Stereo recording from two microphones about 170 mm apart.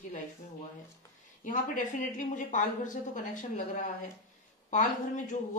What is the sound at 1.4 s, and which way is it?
Speech, 50° left (ahead or behind).